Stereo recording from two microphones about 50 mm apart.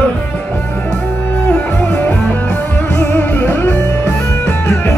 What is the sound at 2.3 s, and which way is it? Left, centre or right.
Music, left.